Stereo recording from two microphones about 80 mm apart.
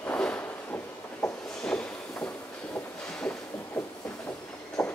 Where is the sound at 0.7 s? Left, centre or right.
Left.